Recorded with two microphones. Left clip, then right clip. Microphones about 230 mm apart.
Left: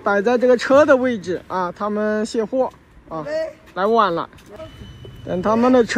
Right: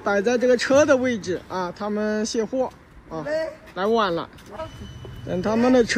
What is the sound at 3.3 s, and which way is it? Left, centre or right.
Speech, right.